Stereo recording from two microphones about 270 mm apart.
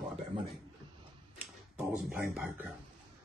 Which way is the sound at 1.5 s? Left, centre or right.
Centre.